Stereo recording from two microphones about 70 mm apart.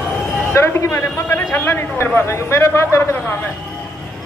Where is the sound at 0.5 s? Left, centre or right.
Left.